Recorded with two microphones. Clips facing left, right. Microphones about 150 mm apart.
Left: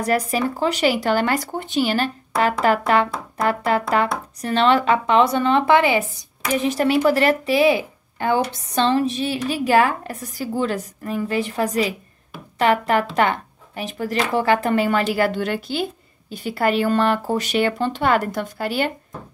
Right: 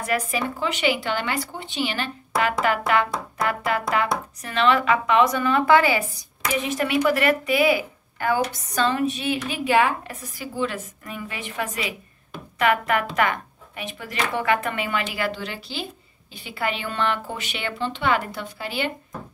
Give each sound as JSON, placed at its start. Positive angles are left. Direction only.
{"t": 0.0, "sound": "speech", "side_deg": 35}
{"t": 6.5, "sound": "speech", "side_deg": 35}